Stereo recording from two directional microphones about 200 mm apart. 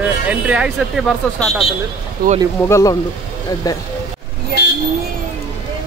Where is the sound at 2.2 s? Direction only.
45° right (ahead or behind).